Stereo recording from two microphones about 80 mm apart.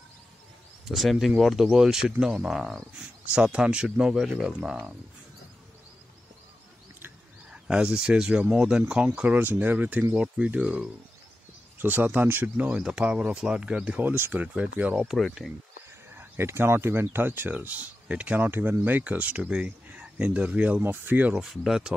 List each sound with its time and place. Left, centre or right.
0.8 s speech: centre
1.1 s speech: centre
7.5 s speech: centre
9.4 s speech: right
10.1 s speech: centre
14.0 s speech: right
15.0 s speech: centre
16.2 s speech: right
21.4 s speech: centre